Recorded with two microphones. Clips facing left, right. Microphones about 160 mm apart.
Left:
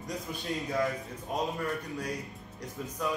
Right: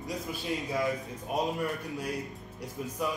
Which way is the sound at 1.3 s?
10° right (ahead or behind).